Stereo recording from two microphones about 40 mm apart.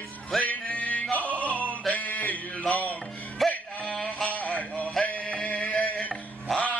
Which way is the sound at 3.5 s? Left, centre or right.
Left.